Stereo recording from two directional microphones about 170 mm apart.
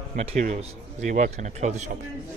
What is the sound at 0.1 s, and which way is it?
A man's voice, 40° right (ahead or behind).